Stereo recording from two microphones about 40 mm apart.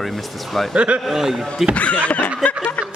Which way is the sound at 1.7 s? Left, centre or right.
Left.